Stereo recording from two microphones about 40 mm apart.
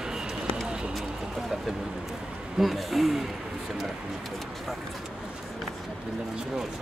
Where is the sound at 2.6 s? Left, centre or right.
Centre.